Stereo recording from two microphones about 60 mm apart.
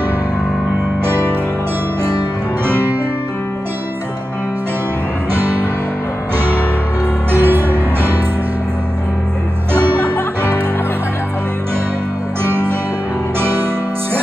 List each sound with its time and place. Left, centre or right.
2.6 s music: right
5.3 s music: right
7.3 s music: right
12.4 s music: right